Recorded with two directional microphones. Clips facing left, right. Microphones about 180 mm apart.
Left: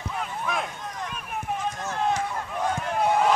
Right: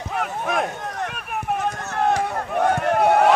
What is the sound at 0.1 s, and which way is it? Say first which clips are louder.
Run: right 6 dB; 60° right (ahead or behind).